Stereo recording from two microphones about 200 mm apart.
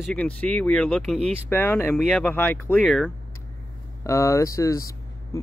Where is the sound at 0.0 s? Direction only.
5° left (ahead or behind).